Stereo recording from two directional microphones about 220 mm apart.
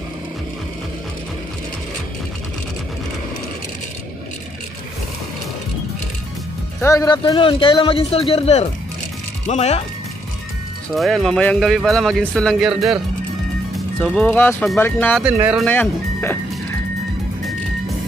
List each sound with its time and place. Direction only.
6.8 s a man's voice: 15° left (ahead or behind)
11.0 s speech: centre (ahead or behind)
15.2 s speech: 5° right (ahead or behind)
15.6 s speech: 10° left (ahead or behind)